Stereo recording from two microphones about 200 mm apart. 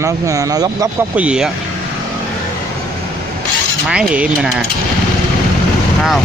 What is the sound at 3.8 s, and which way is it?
Speech, 5° right (ahead or behind).